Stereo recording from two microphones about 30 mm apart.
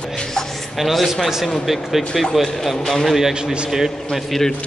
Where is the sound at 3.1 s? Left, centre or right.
Centre.